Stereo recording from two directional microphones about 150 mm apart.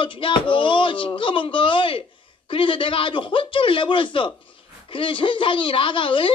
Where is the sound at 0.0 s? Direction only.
35° left (ahead or behind).